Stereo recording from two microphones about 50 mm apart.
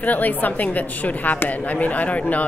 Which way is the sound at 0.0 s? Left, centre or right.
Left.